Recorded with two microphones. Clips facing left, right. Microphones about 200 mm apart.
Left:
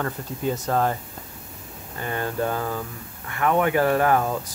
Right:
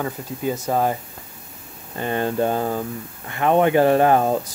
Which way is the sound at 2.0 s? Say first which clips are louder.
Right 5 dB; 25° right (ahead or behind).